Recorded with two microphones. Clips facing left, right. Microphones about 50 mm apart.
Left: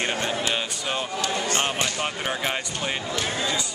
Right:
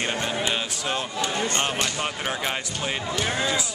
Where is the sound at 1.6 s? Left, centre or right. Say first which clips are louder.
Even; centre.